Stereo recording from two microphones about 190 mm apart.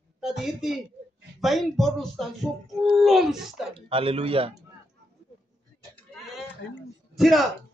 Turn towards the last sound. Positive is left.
turn(degrees=0)  # may be behind; listen again after turning